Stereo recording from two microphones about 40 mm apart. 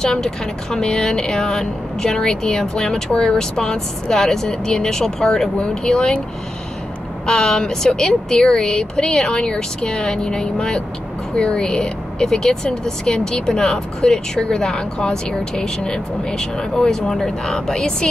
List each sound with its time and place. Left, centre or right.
0.0 s speech: centre
7.2 s speech: centre